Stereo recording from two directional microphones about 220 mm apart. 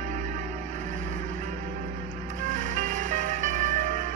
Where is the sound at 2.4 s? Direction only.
35° right (ahead or behind).